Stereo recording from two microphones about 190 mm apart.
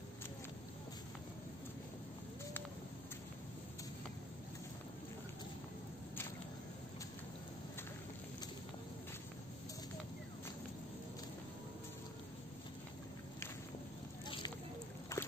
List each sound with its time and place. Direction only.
15.1 s slosh: 15° left (ahead or behind)